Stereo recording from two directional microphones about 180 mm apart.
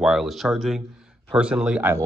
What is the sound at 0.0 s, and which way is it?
A man's voice, centre (ahead or behind).